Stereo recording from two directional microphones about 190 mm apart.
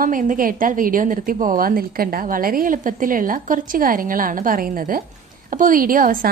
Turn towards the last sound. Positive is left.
turn(degrees=-45)  # may be behind; listen again after turning